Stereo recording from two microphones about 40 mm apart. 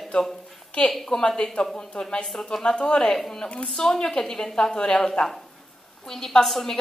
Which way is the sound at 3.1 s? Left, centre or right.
Centre.